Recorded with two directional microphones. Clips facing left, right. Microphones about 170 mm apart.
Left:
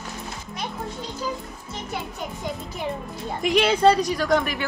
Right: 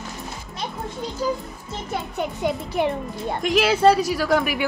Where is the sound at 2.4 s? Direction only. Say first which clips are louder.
Right 8 dB; 70° right (ahead or behind).